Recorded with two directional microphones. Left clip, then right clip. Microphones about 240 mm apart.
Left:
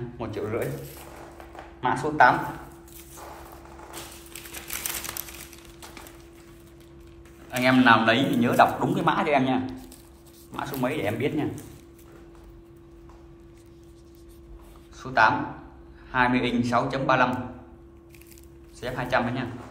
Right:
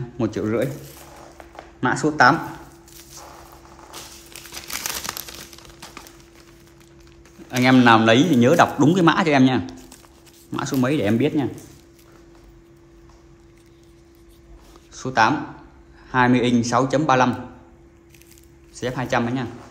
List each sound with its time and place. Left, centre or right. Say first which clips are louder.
0.2 s speech: right 7 dB; right
1.8 s a man's voice: right 3 dB; right
7.5 s a man's voice: right 4 dB; right
15.0 s a man's voice: right 2 dB; right
18.8 s a man's voice: right 3 dB; right